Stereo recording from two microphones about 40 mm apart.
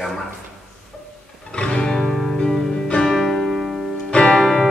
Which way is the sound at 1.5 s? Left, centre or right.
Left.